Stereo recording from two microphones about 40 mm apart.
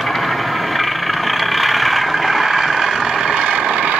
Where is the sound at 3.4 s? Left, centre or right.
Right.